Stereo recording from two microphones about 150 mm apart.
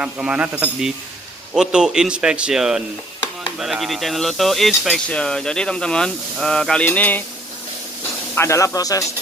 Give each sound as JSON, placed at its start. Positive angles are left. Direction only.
{"t": 0.0, "sound": "speech", "side_deg": -10}
{"t": 8.4, "sound": "speech", "side_deg": 20}